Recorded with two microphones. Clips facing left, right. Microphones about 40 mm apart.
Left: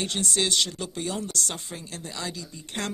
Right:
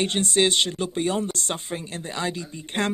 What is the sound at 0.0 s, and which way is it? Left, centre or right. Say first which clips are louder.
Speech: right 6 dB; right.